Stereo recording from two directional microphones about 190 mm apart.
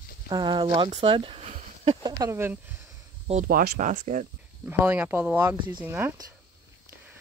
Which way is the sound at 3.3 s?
45° right (ahead or behind).